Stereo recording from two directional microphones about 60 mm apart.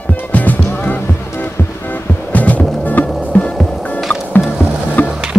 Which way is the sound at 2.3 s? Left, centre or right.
Left.